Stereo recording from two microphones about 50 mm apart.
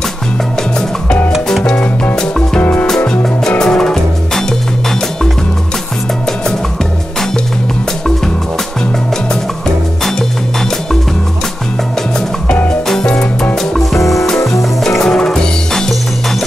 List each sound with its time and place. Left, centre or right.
0.7 s music: centre
2.6 s music: left
3.4 s music: centre
13.6 s music: centre